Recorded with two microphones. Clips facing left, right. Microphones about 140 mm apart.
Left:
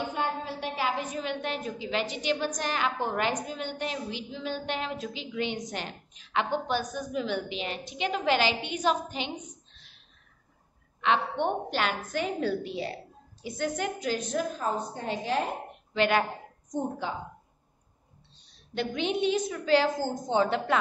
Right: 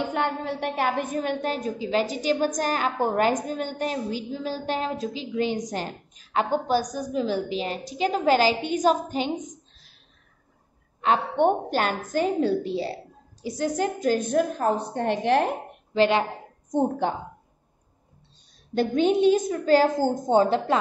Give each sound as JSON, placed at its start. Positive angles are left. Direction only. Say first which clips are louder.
{"t": 0.1, "sound": "a woman's voice", "louder": "right 5 dB", "side_deg": -65}
{"t": 11.0, "sound": "a woman's voice", "louder": "right 5 dB", "side_deg": -45}
{"t": 15.9, "sound": "speech", "louder": "right 4 dB", "side_deg": -30}
{"t": 16.7, "sound": "a woman's voice", "louder": "right 8 dB", "side_deg": -60}
{"t": 18.8, "sound": "a woman's voice", "louder": "right 8 dB", "side_deg": -40}